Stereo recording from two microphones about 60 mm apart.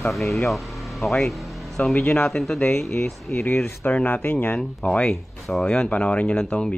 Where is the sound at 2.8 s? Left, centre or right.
Left.